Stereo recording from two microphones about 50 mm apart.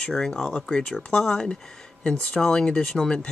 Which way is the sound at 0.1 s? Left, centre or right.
Centre.